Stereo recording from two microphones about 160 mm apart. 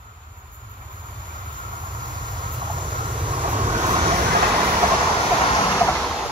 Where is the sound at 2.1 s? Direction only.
30° right (ahead or behind).